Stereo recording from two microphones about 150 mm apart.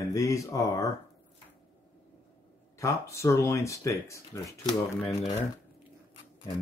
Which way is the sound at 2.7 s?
20° left (ahead or behind).